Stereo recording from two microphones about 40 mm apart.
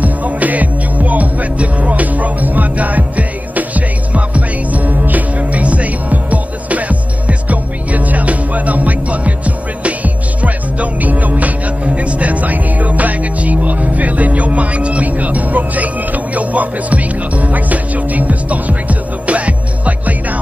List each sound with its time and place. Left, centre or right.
0.0 s music: right